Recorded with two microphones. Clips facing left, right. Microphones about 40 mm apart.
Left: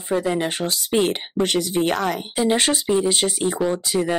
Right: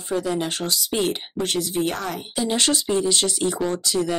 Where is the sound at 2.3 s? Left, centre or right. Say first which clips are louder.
Left 1 dB; left.